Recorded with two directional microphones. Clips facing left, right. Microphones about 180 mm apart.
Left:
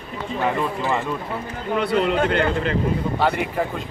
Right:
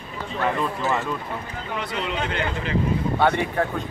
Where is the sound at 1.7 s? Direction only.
55° left (ahead or behind).